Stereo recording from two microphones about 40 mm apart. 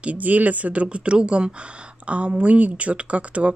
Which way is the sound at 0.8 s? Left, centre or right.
Right.